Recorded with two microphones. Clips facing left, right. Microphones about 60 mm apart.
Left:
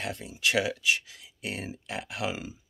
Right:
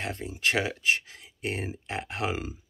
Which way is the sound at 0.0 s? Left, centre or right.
Right.